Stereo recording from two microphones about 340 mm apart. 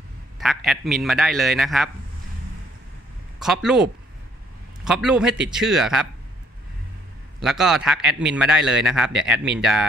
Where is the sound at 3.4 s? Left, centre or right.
Centre.